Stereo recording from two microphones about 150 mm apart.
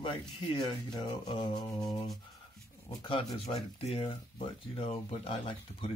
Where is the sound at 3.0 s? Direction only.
35° left (ahead or behind).